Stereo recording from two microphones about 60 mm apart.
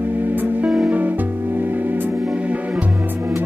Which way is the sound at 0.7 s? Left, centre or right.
Centre.